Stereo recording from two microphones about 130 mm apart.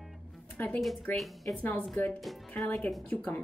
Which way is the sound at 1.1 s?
Centre (ahead or behind).